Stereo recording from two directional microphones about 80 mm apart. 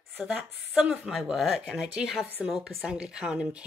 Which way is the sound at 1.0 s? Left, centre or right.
Centre.